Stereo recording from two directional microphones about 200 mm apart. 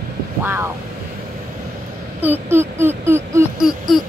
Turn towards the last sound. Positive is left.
turn(degrees=0)  # may be behind; listen again after turning